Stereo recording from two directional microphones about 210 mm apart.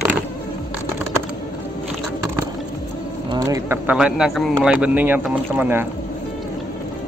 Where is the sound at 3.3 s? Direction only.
15° right (ahead or behind).